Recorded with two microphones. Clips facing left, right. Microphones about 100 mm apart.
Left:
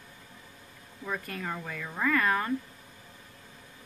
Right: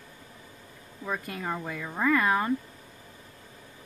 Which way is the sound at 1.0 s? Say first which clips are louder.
Right 2 dB; 15° right (ahead or behind).